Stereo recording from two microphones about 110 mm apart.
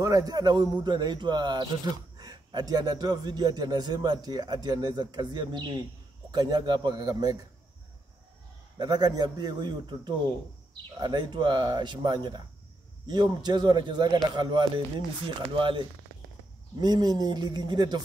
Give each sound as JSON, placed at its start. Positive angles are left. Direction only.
{"t": 0.0, "sound": "speech", "side_deg": -35}
{"t": 8.7, "sound": "speech", "side_deg": -40}
{"t": 16.8, "sound": "speech", "side_deg": -40}